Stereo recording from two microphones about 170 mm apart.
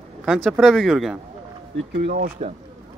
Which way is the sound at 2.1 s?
50° right (ahead or behind).